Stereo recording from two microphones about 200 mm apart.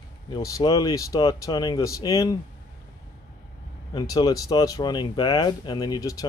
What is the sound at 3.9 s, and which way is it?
Speech, 20° left (ahead or behind).